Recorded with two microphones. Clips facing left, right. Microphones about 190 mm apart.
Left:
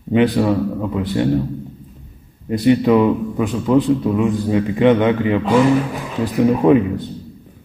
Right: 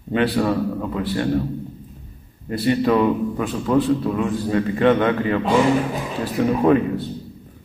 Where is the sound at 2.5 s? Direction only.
15° left (ahead or behind).